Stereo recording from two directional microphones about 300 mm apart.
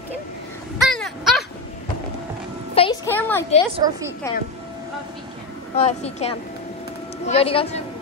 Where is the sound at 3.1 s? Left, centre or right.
Centre.